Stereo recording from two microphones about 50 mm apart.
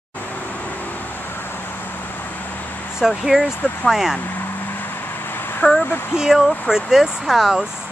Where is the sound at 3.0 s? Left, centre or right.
Centre.